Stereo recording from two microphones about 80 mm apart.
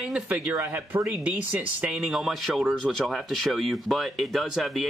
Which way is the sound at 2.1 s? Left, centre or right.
Centre.